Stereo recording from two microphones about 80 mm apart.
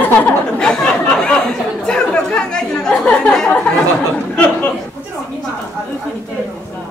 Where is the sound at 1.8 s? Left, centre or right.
Centre.